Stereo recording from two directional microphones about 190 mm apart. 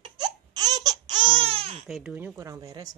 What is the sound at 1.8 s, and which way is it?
Speech, centre (ahead or behind).